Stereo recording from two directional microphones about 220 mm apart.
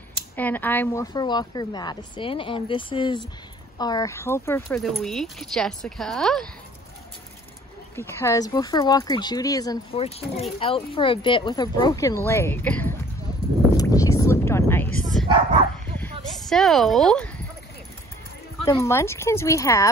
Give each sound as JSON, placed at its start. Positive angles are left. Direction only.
{"t": 0.4, "sound": "speech", "side_deg": 10}
{"t": 4.8, "sound": "speech", "side_deg": 0}
{"t": 7.9, "sound": "speech", "side_deg": 10}
{"t": 13.7, "sound": "a sound", "side_deg": 15}
{"t": 18.7, "sound": "speech", "side_deg": 15}